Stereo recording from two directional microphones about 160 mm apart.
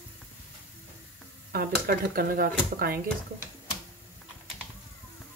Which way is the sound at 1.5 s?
70° right (ahead or behind).